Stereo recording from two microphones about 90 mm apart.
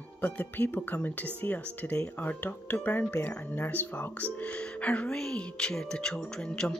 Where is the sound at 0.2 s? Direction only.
20° left (ahead or behind).